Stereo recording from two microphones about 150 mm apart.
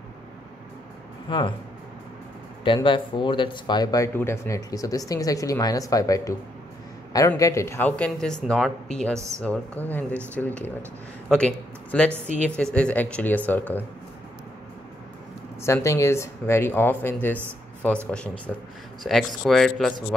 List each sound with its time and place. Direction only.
1.3 s speech: 35° left (ahead or behind)
2.6 s speech: 35° left (ahead or behind); by 13.8 s 10° left (ahead or behind)
15.6 s speech: 20° left (ahead or behind); by 20.2 s centre (ahead or behind)